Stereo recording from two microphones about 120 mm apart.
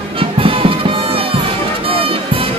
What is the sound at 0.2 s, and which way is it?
Music, 50° right (ahead or behind).